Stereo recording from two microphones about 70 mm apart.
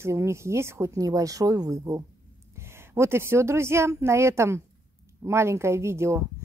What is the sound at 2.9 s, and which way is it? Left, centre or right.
Speech, right.